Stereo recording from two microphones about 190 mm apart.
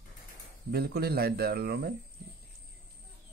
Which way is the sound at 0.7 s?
55° right (ahead or behind).